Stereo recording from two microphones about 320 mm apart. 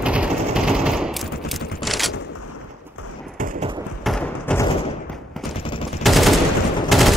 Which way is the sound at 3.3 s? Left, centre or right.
Right.